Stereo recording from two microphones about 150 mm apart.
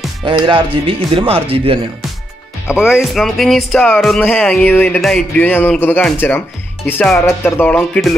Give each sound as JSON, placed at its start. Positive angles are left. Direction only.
{"t": 0.2, "sound": "speech", "side_deg": -35}
{"t": 2.7, "sound": "speech", "side_deg": -5}
{"t": 7.7, "sound": "speech", "side_deg": 5}